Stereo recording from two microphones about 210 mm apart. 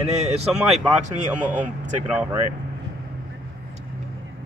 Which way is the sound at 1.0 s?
35° right (ahead or behind).